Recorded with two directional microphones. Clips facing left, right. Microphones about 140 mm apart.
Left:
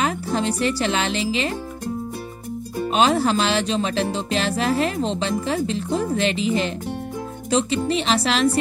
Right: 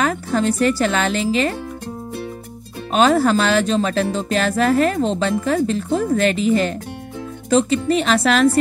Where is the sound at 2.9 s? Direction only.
45° right (ahead or behind).